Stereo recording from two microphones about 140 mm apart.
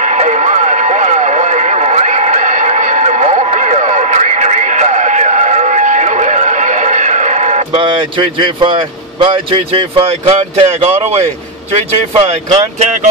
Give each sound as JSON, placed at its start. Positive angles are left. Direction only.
{"t": 0.0, "sound": "vehicle", "side_deg": -55}
{"t": 7.8, "sound": "speech", "side_deg": -35}